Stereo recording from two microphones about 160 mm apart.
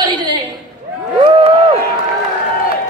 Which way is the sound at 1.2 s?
30° right (ahead or behind).